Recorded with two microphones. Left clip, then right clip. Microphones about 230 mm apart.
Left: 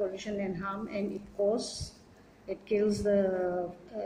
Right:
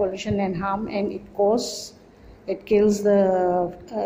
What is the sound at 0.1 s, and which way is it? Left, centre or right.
Speech, centre.